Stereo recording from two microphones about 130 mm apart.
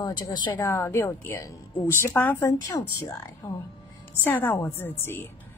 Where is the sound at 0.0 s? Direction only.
35° left (ahead or behind).